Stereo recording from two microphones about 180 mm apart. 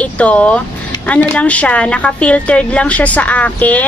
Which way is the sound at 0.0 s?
5° left (ahead or behind).